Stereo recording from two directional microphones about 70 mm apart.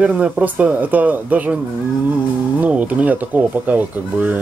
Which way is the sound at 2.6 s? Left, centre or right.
Right.